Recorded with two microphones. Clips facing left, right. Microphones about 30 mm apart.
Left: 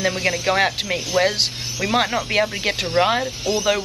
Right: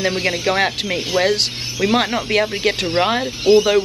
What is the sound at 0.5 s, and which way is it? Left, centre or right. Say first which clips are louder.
Speech: right 1 dB; centre.